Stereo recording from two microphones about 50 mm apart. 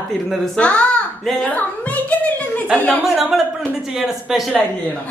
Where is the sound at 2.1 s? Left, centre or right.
Left.